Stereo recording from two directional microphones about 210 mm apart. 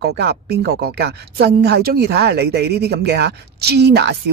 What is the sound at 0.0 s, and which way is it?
Speech, 50° right (ahead or behind).